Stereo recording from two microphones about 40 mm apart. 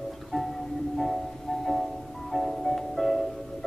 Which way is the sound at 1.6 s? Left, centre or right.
Centre.